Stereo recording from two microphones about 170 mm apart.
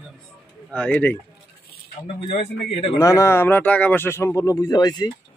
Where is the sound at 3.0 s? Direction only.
15° left (ahead or behind).